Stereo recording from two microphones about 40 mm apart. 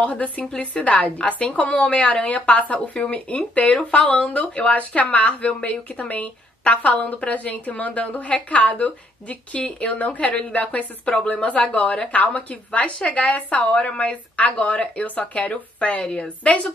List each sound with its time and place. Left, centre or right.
0.0 s speech: left